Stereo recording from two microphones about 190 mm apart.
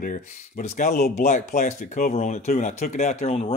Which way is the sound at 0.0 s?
40° left (ahead or behind).